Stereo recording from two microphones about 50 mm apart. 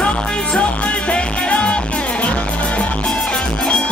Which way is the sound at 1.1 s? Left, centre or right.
Left.